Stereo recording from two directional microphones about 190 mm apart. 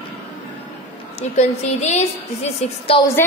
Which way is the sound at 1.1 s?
35° left (ahead or behind).